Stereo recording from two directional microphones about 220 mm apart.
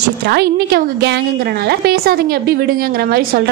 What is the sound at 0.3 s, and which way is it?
A woman's voice, 45° right (ahead or behind).